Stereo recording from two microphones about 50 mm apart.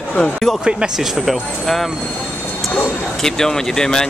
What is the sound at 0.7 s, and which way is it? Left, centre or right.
Speech, centre.